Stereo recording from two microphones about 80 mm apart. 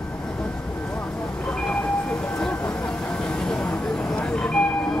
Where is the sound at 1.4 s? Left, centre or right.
Centre.